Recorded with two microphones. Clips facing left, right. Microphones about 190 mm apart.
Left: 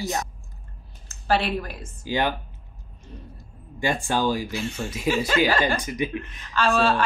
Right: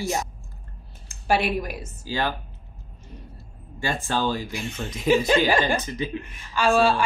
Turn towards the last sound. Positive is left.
turn(degrees=-10)  # may be behind; listen again after turning